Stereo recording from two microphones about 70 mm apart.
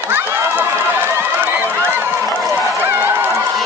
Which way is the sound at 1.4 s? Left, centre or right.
Right.